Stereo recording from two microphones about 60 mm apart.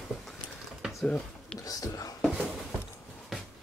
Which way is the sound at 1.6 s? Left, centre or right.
Left.